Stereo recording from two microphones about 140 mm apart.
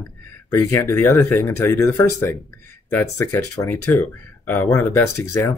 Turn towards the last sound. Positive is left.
turn(degrees=20)  # may be behind; listen again after turning